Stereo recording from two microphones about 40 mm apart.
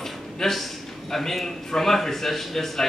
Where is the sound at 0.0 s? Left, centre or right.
Centre.